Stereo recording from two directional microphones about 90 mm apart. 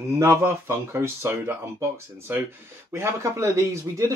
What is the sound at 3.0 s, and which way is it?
Speech, 35° right (ahead or behind).